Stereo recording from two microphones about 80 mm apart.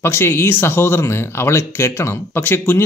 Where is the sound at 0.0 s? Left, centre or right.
Left.